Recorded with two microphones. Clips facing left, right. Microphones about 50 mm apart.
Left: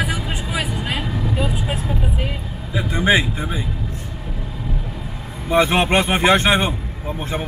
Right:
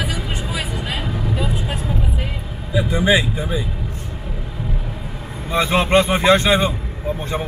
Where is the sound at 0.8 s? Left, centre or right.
Left.